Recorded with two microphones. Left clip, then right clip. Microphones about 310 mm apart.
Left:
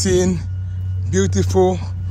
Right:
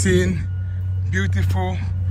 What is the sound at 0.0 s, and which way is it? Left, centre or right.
Speech, centre.